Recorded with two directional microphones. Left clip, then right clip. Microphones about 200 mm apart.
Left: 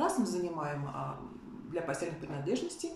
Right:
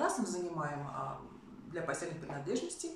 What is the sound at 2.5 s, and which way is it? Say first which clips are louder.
Speech: left 3 dB; 5° left (ahead or behind).